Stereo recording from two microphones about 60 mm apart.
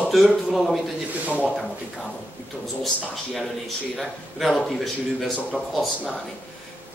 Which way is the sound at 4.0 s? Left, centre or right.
Centre.